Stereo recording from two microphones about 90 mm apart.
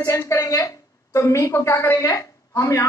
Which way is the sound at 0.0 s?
30° left (ahead or behind).